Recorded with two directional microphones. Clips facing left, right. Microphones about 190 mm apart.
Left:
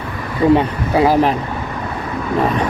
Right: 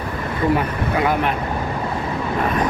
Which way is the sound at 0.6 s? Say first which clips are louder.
Left 5 dB; 30° left (ahead or behind).